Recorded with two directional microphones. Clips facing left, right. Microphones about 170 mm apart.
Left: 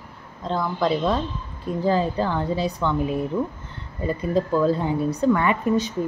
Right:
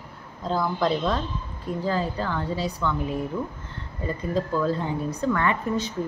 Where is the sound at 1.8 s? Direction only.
20° left (ahead or behind).